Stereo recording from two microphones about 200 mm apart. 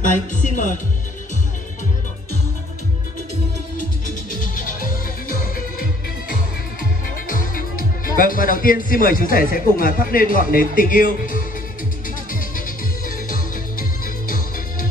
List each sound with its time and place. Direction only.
0.3 s music: 40° left (ahead or behind)
3.7 s music: 40° left (ahead or behind)
6.8 s speech: 45° left (ahead or behind)
12.3 s music: 45° left (ahead or behind)